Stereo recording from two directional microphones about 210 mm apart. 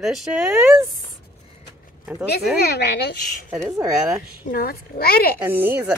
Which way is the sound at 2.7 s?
50° left (ahead or behind).